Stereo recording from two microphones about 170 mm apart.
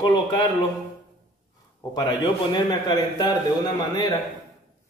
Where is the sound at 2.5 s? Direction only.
25° left (ahead or behind).